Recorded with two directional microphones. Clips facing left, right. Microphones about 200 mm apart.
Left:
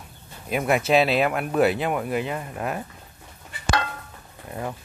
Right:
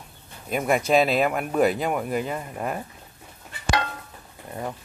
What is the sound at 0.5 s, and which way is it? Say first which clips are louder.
Speech: even; 5° left (ahead or behind).